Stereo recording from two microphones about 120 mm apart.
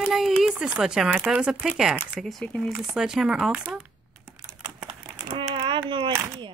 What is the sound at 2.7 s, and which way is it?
Speech, 5° right (ahead or behind).